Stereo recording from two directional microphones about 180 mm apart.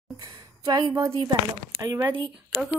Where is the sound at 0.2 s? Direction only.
25° right (ahead or behind).